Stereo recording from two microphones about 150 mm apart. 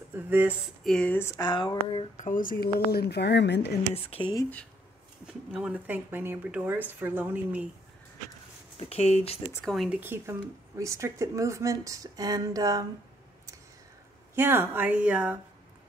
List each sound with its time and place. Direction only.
0.1 s speech: 10° right (ahead or behind)
0.8 s speech: 5° left (ahead or behind)
1.4 s speech: 30° left (ahead or behind)
2.1 s speech: 60° left (ahead or behind); by 3.7 s 90° left
3.9 s speech: 40° left (ahead or behind)
5.2 s speech: 5° right (ahead or behind)
8.7 s speech: 45° left (ahead or behind)
9.7 s speech: 5° right (ahead or behind); by 12.8 s 25° right (ahead or behind)
14.3 s speech: 15° right (ahead or behind)